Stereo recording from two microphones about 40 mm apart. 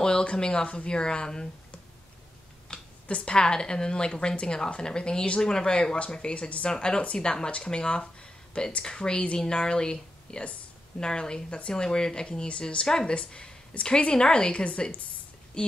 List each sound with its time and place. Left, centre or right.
0.0 s speech: left
2.7 s a sound: left
3.1 s speech: left
6.7 s speech: centre
14.5 s speech: left